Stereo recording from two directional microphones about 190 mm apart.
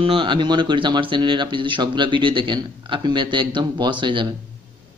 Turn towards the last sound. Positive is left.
turn(degrees=-25)  # may be behind; listen again after turning